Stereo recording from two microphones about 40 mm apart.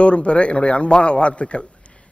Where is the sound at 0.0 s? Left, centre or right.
Left.